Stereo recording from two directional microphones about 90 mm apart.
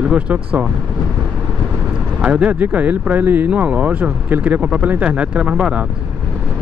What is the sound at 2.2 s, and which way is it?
Speech, 15° right (ahead or behind).